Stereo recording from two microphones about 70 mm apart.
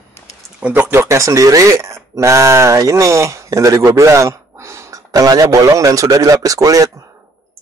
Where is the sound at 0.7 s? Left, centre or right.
Right.